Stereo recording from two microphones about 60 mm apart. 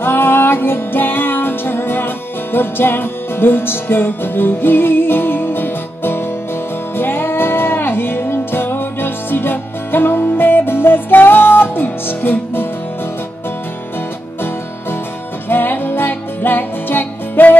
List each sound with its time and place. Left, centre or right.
0.0 s music: left
15.4 s music: left